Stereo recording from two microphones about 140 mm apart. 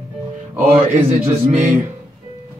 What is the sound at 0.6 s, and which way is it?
Speech, 20° right (ahead or behind).